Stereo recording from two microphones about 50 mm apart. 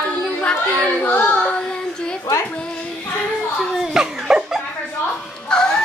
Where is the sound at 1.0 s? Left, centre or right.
Left.